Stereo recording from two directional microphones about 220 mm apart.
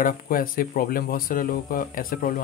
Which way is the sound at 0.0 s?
40° left (ahead or behind).